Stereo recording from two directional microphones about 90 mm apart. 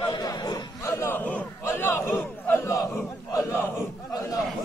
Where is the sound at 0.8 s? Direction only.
30° left (ahead or behind).